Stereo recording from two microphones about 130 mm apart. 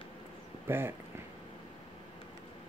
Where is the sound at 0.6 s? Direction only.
15° right (ahead or behind).